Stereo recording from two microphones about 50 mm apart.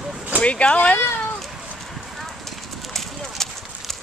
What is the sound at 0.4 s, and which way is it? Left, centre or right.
Speech, left.